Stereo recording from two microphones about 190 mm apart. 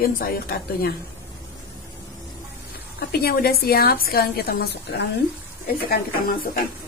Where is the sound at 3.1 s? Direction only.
55° left (ahead or behind).